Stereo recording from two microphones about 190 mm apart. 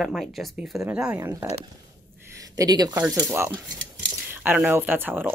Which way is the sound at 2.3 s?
20° right (ahead or behind).